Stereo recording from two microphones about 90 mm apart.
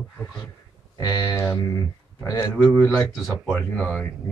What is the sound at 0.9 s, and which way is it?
Speech, 40° left (ahead or behind).